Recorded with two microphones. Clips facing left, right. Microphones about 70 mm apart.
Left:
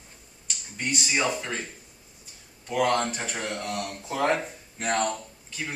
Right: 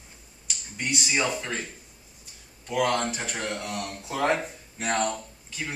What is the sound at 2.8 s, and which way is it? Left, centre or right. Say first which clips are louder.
Speech: left 1 dB; centre.